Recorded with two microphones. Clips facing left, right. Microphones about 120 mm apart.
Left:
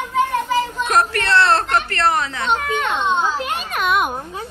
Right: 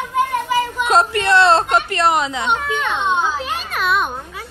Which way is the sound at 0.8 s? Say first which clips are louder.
Right 5 dB; 20° right (ahead or behind).